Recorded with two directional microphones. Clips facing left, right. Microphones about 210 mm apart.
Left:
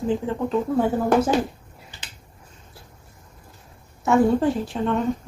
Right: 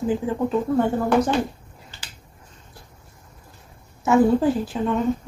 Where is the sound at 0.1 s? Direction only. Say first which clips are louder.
Even; 5° right (ahead or behind).